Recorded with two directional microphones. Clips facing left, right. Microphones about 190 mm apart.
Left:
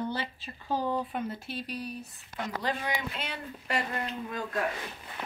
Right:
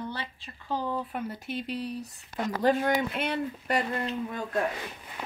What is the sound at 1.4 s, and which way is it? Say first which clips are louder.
Speech: right 4 dB; 20° right (ahead or behind).